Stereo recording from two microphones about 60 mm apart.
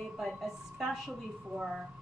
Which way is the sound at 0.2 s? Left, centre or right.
Centre.